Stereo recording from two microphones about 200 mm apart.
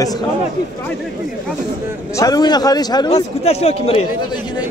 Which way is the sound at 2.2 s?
20° left (ahead or behind).